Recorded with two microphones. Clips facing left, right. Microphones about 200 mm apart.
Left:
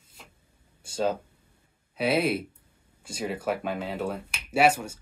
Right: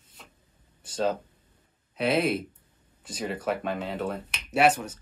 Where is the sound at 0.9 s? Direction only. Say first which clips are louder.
Even; 10° left (ahead or behind).